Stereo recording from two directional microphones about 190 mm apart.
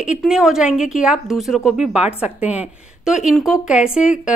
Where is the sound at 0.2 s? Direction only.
Centre (ahead or behind).